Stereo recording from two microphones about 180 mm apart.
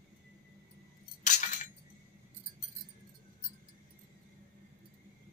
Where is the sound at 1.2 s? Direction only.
40° left (ahead or behind).